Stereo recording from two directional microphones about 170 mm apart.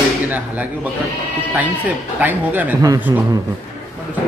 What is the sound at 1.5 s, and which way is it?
Speech, 10° right (ahead or behind).